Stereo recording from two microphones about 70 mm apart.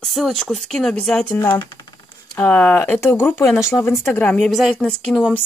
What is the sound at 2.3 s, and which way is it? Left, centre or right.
Speech, left.